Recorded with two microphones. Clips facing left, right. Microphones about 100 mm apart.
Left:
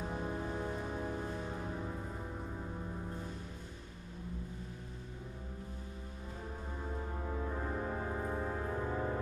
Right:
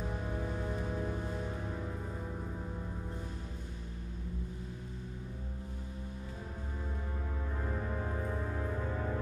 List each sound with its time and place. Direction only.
8.9 s music: 20° left (ahead or behind)